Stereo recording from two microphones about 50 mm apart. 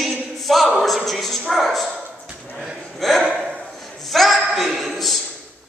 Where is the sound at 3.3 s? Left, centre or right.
Centre.